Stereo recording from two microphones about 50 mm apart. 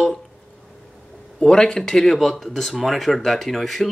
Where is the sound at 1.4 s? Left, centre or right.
Centre.